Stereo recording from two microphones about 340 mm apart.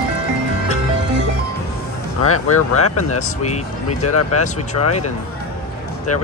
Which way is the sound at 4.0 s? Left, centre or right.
Left.